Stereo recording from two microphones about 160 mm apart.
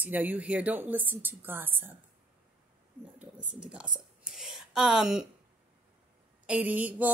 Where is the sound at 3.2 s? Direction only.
10° right (ahead or behind).